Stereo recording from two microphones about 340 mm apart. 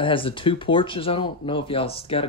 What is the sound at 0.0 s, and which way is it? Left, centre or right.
Speech, centre.